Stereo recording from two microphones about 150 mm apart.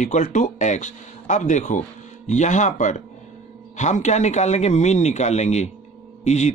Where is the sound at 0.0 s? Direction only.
55° left (ahead or behind).